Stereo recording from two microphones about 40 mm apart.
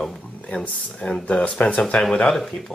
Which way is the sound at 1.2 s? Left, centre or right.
Left.